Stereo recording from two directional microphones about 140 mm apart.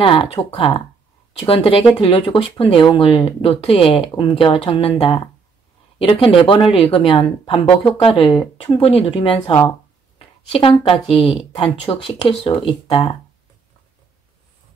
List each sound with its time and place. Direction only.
0.0 s speech: 40° left (ahead or behind)